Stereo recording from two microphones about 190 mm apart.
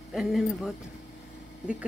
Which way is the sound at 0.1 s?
Centre (ahead or behind).